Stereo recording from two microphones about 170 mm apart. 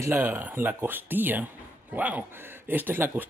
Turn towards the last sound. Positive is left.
turn(degrees=-10)  # may be behind; listen again after turning